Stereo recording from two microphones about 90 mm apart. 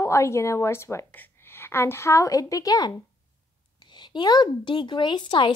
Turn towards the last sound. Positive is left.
turn(degrees=60)  # may be behind; listen again after turning